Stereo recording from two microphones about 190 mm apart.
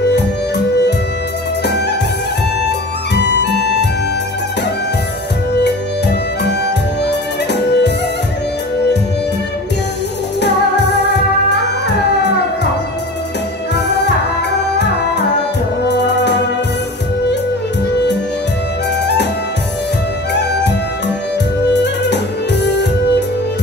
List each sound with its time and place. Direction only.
1.6 s music: 60° left (ahead or behind)
3.2 s music: 65° left (ahead or behind)
5.5 s music: 65° left (ahead or behind)
7.0 s music: 60° left (ahead or behind)
13.7 s music: 65° left (ahead or behind)
21.8 s music: 65° left (ahead or behind)